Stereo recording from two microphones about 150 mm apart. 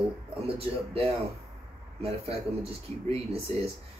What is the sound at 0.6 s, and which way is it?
Speech, 40° right (ahead or behind).